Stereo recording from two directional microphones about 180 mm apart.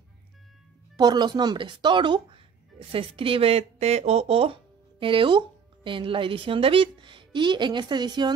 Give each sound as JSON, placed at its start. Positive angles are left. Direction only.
{"t": 0.9, "sound": "a woman's voice", "side_deg": -25}